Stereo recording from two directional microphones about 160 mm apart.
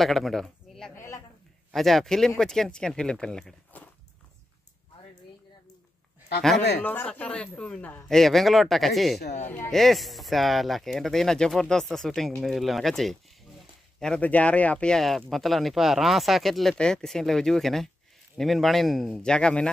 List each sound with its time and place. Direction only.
0.0 s speech: centre (ahead or behind)
0.9 s a sound: 15° left (ahead or behind)
1.7 s speech: centre (ahead or behind)
6.8 s speech: 10° left (ahead or behind)